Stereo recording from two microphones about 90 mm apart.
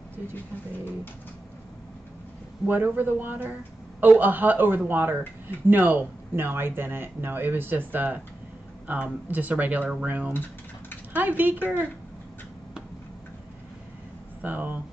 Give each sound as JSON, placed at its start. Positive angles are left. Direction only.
{"t": 2.6, "sound": "speech", "side_deg": -20}
{"t": 14.4, "sound": "speech", "side_deg": -20}